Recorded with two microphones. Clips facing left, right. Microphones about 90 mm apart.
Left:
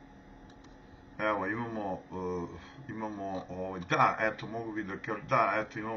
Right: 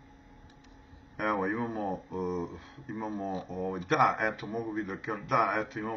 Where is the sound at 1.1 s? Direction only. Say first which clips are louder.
Right 1 dB; 5° right (ahead or behind).